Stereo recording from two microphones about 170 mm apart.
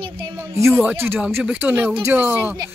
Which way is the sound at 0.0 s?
30° right (ahead or behind).